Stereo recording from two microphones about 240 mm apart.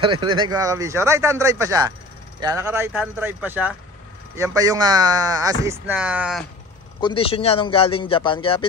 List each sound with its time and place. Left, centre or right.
0.0 s speech: centre
7.0 s a man's voice: left